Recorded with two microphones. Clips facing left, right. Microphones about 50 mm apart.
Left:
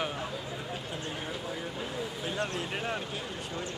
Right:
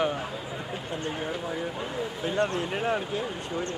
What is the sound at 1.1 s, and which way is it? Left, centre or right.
Speech, centre.